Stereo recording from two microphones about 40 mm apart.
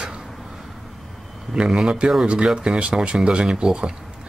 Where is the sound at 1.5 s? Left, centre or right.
Centre.